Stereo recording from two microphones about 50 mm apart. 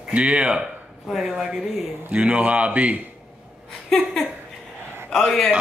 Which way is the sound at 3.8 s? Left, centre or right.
Centre.